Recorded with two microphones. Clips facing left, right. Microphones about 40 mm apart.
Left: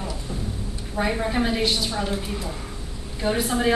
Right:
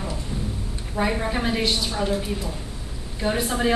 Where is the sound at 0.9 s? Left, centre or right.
Centre.